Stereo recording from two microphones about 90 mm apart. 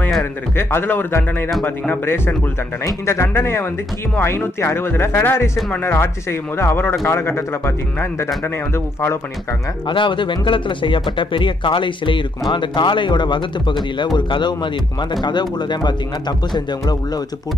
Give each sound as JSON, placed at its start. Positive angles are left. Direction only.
{"t": 0.6, "sound": "speech", "side_deg": 25}
{"t": 9.8, "sound": "speech", "side_deg": 65}